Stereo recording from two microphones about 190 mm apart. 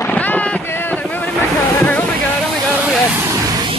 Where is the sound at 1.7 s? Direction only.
10° left (ahead or behind).